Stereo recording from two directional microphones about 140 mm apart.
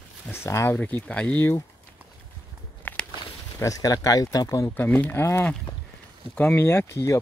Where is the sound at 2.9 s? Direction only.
15° left (ahead or behind).